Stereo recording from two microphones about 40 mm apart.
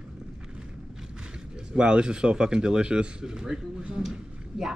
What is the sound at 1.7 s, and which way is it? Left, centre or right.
Speech, right.